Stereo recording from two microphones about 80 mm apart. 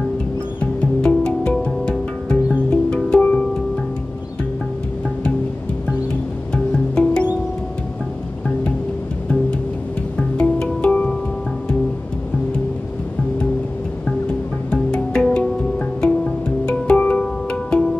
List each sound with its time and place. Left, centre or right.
0.6 s music: centre
2.7 s music: centre
6.5 s music: centre
10.3 s music: centre
14.7 s music: centre